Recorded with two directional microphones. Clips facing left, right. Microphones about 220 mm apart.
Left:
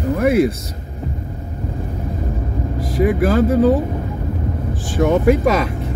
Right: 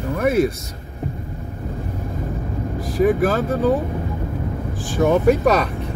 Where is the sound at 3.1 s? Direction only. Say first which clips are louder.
Left 3 dB; centre (ahead or behind).